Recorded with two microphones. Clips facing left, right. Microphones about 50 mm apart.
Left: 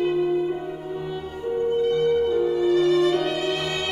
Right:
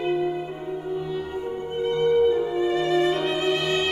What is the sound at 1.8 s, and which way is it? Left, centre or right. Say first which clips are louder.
Music: right 4 dB; right.